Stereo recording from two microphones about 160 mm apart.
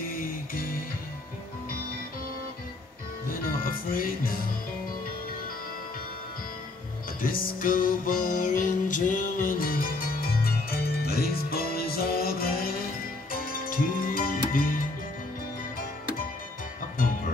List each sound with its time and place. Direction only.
0.1 s music: 60° left (ahead or behind)
3.3 s music: 60° left (ahead or behind)
7.2 s music: 60° left (ahead or behind)